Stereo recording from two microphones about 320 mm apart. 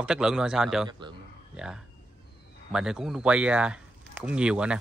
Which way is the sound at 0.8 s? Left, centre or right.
Centre.